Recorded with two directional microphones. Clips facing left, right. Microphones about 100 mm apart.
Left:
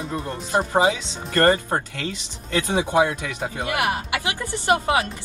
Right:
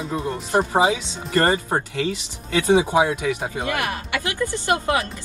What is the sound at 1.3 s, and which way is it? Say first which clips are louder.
Speech: left 1 dB; 10° right (ahead or behind).